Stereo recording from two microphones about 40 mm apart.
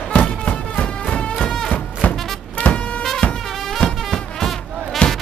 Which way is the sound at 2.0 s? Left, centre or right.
Left.